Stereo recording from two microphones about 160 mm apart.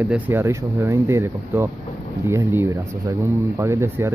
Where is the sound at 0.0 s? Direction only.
10° right (ahead or behind).